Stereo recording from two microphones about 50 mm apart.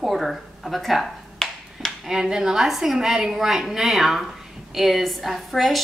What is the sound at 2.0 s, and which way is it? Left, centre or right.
A woman's voice, centre.